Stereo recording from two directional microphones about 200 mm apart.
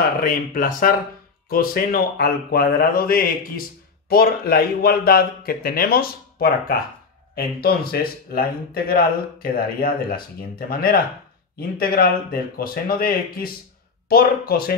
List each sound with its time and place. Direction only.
0.2 s speech: 45° left (ahead or behind)